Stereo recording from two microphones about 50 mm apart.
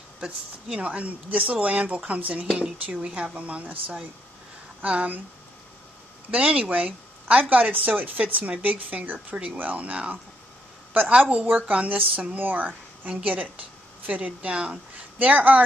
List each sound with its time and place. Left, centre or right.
0.2 s speech: right
6.3 s speech: right
11.4 s speech: right
11.7 s speech: right
12.4 s speech: right
15.1 s speech: right